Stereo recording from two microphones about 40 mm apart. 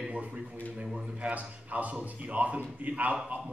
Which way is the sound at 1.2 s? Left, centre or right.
Right.